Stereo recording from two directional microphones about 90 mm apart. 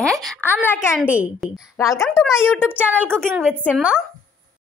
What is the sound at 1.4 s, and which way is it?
Speech, centre (ahead or behind).